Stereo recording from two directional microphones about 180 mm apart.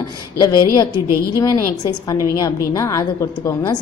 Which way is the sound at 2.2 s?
20° left (ahead or behind).